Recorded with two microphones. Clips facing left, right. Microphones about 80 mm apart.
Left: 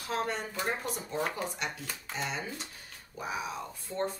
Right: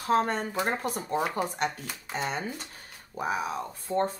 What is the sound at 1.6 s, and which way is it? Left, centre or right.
A woman's voice, right.